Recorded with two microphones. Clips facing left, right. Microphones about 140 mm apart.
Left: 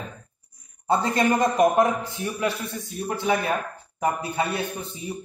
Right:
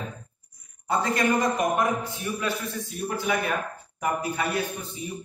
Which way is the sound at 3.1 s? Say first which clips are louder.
Left 3 dB; 25° left (ahead or behind).